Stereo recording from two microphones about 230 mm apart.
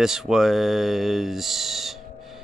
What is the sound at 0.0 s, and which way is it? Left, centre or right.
Speech, centre.